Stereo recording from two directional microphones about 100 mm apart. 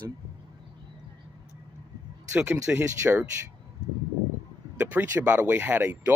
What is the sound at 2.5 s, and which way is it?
Speech, 25° right (ahead or behind).